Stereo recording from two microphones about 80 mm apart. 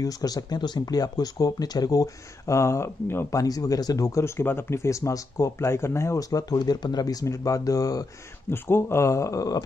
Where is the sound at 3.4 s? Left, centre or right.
Left.